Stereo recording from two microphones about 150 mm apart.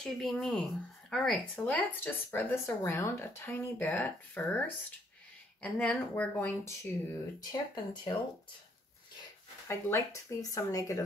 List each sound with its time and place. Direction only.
0.0 s speech: centre (ahead or behind); by 7.4 s 20° left (ahead or behind)
7.7 s speech: 30° left (ahead or behind)
9.7 s speech: 20° left (ahead or behind)